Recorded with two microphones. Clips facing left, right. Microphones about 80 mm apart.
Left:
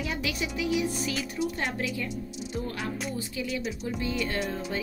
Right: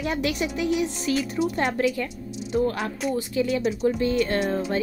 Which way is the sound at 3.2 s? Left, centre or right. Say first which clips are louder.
Right 8 dB; right.